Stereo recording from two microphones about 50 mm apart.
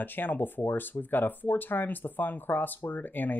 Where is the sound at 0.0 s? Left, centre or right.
Left.